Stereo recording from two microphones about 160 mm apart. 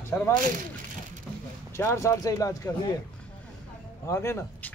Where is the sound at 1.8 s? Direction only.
15° left (ahead or behind).